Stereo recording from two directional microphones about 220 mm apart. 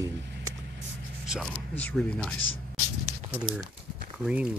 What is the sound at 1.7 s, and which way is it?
Speech, 5° left (ahead or behind).